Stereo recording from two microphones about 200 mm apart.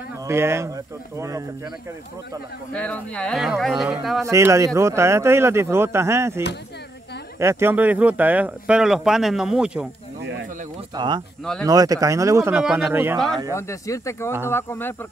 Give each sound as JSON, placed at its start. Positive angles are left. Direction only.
{"t": 0.3, "sound": "speech", "side_deg": -10}
{"t": 2.7, "sound": "speech", "side_deg": 5}
{"t": 4.2, "sound": "speech", "side_deg": -15}
{"t": 11.0, "sound": "speech", "side_deg": -20}
{"t": 13.6, "sound": "speech", "side_deg": 15}